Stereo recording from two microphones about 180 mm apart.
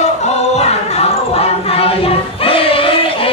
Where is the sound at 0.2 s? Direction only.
35° left (ahead or behind).